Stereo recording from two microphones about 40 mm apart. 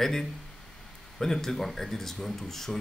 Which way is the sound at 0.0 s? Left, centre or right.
Centre.